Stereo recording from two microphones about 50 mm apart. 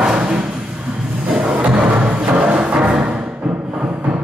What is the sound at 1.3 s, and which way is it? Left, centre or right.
Music, centre.